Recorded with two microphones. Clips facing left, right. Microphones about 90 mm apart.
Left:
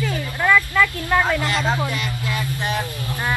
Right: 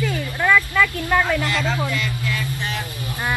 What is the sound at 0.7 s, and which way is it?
Speech, 5° left (ahead or behind).